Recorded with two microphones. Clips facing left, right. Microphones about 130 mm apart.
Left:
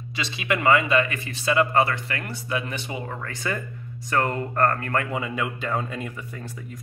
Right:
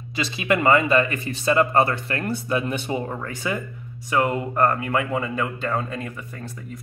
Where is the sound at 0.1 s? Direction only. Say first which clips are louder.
Right 4 dB; 35° right (ahead or behind).